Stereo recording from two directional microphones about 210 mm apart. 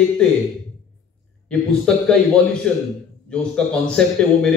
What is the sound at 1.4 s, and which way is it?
A man's voice, 5° left (ahead or behind).